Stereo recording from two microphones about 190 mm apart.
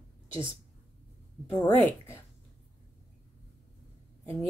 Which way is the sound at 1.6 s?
10° left (ahead or behind).